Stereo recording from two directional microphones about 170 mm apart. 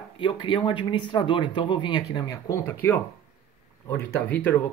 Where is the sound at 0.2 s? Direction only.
30° left (ahead or behind).